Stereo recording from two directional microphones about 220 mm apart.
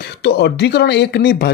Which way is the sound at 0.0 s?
50° left (ahead or behind).